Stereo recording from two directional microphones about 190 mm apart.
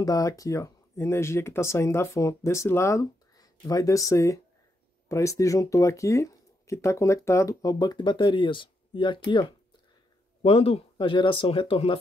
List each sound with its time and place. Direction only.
0.0 s speech: 20° left (ahead or behind)